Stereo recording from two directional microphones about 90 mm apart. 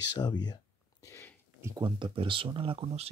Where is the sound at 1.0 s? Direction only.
35° left (ahead or behind).